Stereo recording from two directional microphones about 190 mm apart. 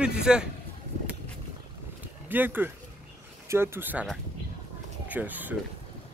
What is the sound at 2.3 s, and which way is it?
Speech, 10° right (ahead or behind).